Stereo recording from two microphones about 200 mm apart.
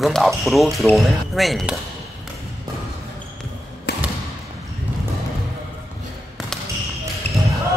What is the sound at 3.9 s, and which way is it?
Basketball bounce, 60° left (ahead or behind).